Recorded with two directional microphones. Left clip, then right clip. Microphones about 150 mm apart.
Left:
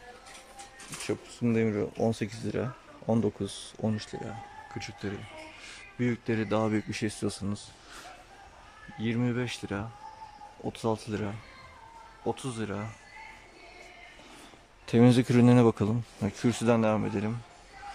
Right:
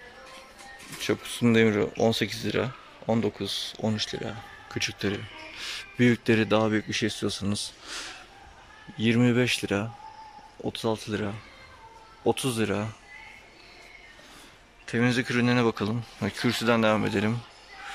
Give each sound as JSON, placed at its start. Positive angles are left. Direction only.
{"t": 1.0, "sound": "speech", "side_deg": 0}
{"t": 7.4, "sound": "speech", "side_deg": -5}
{"t": 8.9, "sound": "speech", "side_deg": -5}
{"t": 10.6, "sound": "speech", "side_deg": 5}
{"t": 12.3, "sound": "speech", "side_deg": -10}
{"t": 14.9, "sound": "speech", "side_deg": 25}